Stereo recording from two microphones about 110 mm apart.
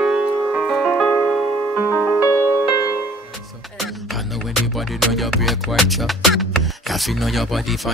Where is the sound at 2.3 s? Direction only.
25° right (ahead or behind).